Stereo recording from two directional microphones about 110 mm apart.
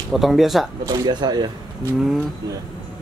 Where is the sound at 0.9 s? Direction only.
40° right (ahead or behind).